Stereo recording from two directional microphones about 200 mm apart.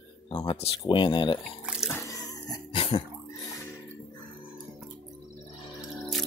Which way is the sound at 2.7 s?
30° left (ahead or behind).